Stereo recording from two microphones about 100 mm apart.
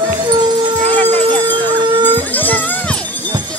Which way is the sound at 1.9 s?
50° right (ahead or behind).